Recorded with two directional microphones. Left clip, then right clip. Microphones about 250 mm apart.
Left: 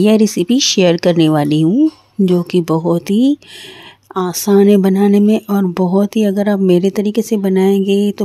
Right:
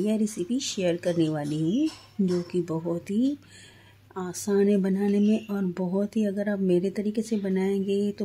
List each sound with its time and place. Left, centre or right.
0.0 s speech: left